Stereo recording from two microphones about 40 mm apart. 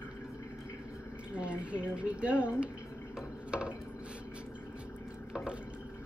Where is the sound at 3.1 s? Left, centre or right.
Right.